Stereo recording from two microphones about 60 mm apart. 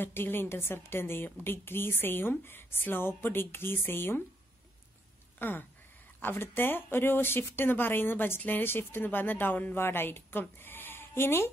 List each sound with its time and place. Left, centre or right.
0.0 s a woman's voice: left
5.4 s a woman's voice: left